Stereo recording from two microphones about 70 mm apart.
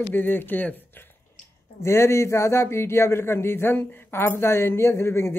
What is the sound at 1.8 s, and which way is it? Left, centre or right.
Speech, left.